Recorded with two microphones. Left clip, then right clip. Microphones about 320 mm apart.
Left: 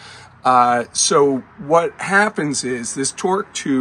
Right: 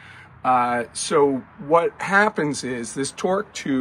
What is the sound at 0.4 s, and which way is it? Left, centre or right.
Speech, centre.